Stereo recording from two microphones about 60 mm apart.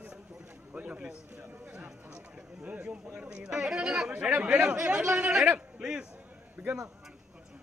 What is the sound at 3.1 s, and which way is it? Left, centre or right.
Chatter, centre.